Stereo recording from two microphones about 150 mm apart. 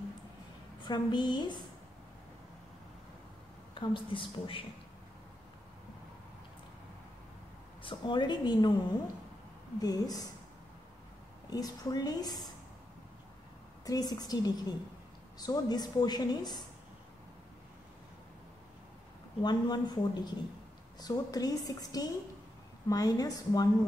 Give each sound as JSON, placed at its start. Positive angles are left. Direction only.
{"t": 0.8, "sound": "a woman's voice", "side_deg": 30}
{"t": 3.7, "sound": "a woman's voice", "side_deg": 35}
{"t": 7.8, "sound": "a woman's voice", "side_deg": 30}
{"t": 9.8, "sound": "a woman's voice", "side_deg": 25}
{"t": 11.5, "sound": "a woman's voice", "side_deg": 25}
{"t": 13.8, "sound": "a woman's voice", "side_deg": 25}
{"t": 19.4, "sound": "a woman's voice", "side_deg": 30}